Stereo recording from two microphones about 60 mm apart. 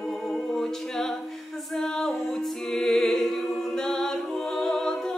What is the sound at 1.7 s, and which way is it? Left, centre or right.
Music, centre.